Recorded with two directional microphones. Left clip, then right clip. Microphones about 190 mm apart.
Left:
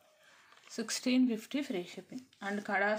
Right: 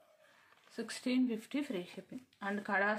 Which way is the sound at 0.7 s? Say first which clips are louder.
Left 4 dB; 20° left (ahead or behind).